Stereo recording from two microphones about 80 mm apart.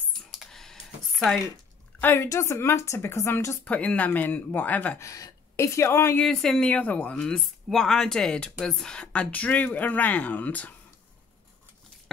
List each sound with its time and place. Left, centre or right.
0.3 s a sound: centre
2.0 s a woman's voice: left
2.2 s a woman's voice: left
3.6 s speech: centre
4.9 s speech: left
6.3 s speech: centre
6.7 s speech: centre